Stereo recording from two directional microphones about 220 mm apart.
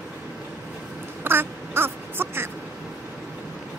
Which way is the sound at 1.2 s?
10° right (ahead or behind).